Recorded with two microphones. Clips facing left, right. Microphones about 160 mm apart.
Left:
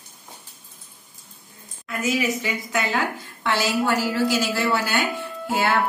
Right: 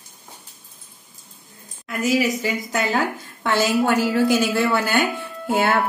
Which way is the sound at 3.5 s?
50° right (ahead or behind).